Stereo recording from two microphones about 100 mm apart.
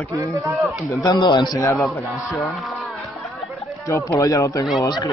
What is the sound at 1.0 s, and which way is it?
Speech, 50° left (ahead or behind).